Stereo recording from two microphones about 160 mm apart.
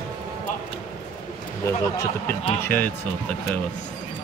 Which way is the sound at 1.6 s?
15° left (ahead or behind).